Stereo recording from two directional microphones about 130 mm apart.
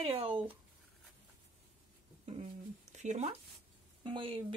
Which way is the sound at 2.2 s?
60° right (ahead or behind).